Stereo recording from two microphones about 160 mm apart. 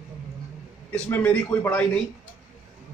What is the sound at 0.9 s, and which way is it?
Speech, 5° left (ahead or behind).